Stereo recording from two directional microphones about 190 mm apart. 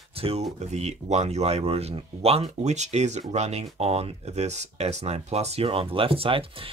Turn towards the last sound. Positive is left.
turn(degrees=-30)  # may be behind; listen again after turning